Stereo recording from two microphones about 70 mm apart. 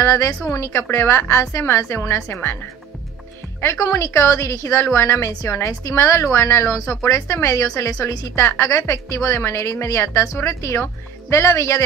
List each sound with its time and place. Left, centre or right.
0.0 s a woman's voice: left
3.8 s a woman's voice: left
8.4 s a woman's voice: left